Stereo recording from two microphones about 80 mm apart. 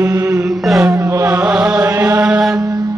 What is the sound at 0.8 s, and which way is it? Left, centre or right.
Music, right.